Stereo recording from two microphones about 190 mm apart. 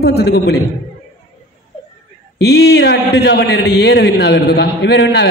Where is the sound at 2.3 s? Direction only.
60° left (ahead or behind).